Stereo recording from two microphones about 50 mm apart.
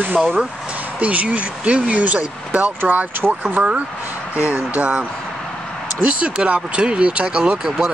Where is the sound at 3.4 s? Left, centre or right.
Right.